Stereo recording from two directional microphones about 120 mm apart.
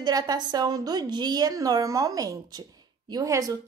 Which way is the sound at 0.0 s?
35° right (ahead or behind).